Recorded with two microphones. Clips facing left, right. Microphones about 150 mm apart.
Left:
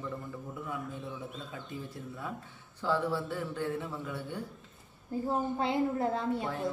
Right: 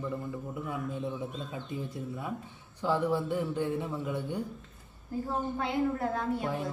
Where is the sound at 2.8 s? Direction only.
15° right (ahead or behind).